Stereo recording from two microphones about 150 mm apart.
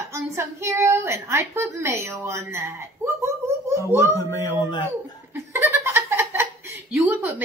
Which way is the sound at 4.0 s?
20° left (ahead or behind).